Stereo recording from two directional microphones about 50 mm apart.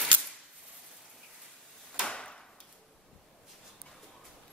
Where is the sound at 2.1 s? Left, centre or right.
Centre.